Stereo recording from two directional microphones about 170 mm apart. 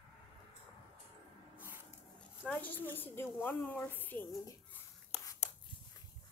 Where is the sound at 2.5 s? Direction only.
10° left (ahead or behind).